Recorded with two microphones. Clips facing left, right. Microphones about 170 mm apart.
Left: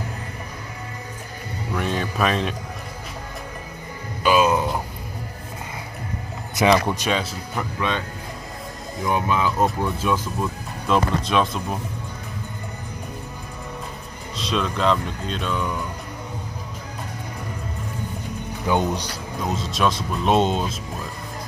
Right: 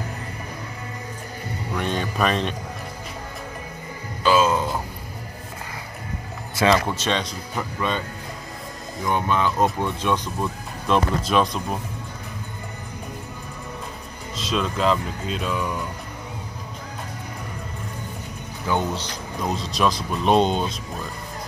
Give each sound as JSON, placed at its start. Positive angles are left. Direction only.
{"t": 1.8, "sound": "speech", "side_deg": 0}
{"t": 4.2, "sound": "speech", "side_deg": 15}
{"t": 6.5, "sound": "speech", "side_deg": 15}
{"t": 9.0, "sound": "speech", "side_deg": 5}
{"t": 14.3, "sound": "speech", "side_deg": 0}
{"t": 18.7, "sound": "speech", "side_deg": 15}
{"t": 19.4, "sound": "speech", "side_deg": 0}